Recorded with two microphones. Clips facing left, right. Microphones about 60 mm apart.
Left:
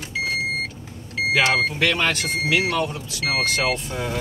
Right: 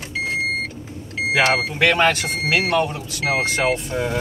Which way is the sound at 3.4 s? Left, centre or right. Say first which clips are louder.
Right 2 dB; right.